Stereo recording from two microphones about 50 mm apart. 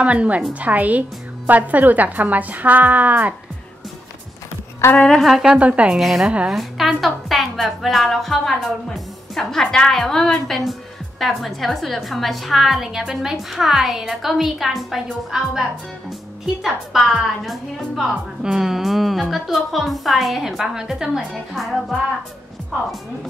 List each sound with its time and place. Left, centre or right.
0.0 s a woman's voice: right
5.2 s a woman's voice: centre
5.5 s a woman's voice: right
5.9 s a woman's voice: centre
6.2 s a woman's voice: right
6.5 s a woman's voice: centre
10.6 s a woman's voice: centre
17.1 s a woman's voice: centre
18.4 s a woman's voice: centre
21.3 s a woman's voice: centre